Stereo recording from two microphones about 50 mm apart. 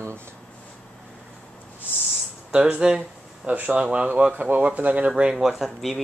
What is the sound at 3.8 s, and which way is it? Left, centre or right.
Speech, right.